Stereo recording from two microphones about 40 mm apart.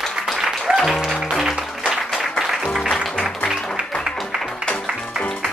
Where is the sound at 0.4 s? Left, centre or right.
Centre.